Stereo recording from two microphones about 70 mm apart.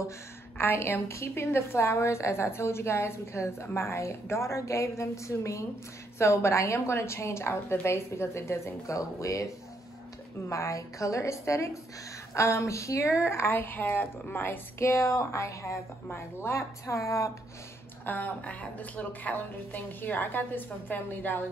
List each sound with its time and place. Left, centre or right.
0.6 s a woman's voice: left
10.5 s speech: left
18.0 s a woman's voice: left